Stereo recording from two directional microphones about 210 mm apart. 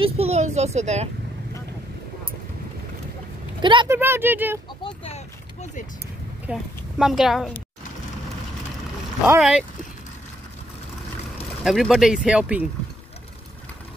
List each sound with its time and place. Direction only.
0.0 s a child's voice: 30° right (ahead or behind)
3.6 s speech: 25° right (ahead or behind)
3.9 s speech: 10° right (ahead or behind)
4.8 s a sound: 30° left (ahead or behind)
6.4 s a woman's voice: centre (ahead or behind)
9.4 s speech: centre (ahead or behind)
11.6 s speech: centre (ahead or behind)